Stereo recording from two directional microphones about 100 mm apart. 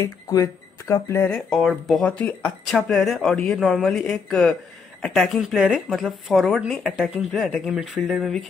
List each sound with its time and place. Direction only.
0.0 s speech: 35° left (ahead or behind)
1.3 s speech: centre (ahead or behind)
2.0 s speech: 15° left (ahead or behind)
3.5 s speech: 5° right (ahead or behind)
4.1 s speech: 5° left (ahead or behind)